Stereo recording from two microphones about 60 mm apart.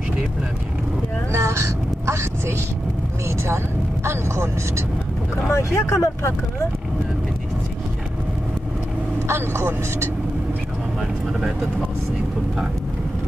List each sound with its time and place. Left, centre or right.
1.3 s a sound: right
3.3 s speech: right
5.5 s speech: left
9.3 s speech: right
11.0 s speech: centre